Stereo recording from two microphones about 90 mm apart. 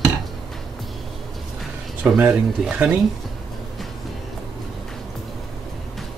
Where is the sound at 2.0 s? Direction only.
20° right (ahead or behind).